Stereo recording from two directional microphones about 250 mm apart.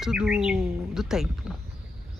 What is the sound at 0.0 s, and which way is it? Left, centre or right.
Speech, centre.